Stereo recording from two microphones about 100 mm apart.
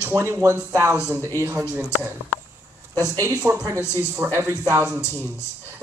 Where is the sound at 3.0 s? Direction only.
35° right (ahead or behind).